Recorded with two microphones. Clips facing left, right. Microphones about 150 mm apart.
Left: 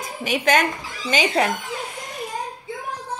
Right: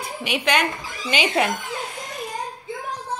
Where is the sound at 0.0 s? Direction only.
40° left (ahead or behind).